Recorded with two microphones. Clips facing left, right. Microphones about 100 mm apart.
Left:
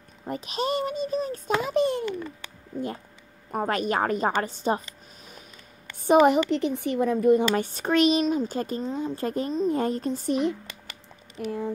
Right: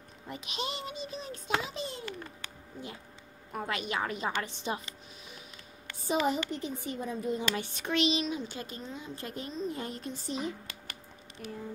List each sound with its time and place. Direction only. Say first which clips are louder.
0.3 s speech: left 10 dB; 45° left (ahead or behind)
3.5 s speech: left 9 dB; 45° left (ahead or behind)
6.0 s speech: left 11 dB; 65° left (ahead or behind)
7.6 s speech: left 8 dB; 40° left (ahead or behind)
11.3 s speech: left 11 dB; 90° left